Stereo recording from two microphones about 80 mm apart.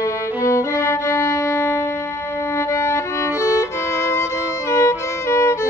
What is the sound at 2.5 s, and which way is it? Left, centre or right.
Violin, left.